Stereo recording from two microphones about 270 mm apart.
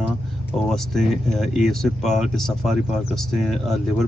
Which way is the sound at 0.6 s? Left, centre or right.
Centre.